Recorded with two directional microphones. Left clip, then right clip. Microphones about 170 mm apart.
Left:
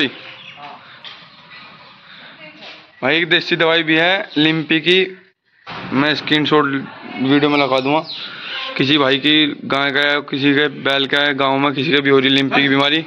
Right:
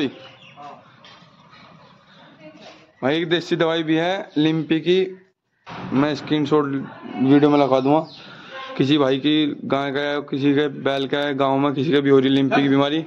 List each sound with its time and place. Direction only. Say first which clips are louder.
3.0 s a man's voice: left 6 dB; 15° right (ahead or behind)
7.2 s a man's voice: left 1 dB; 35° right (ahead or behind)
8.7 s a man's voice: left 4 dB; 15° right (ahead or behind)